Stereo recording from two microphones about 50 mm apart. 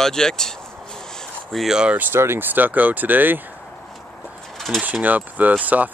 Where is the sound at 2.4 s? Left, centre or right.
Right.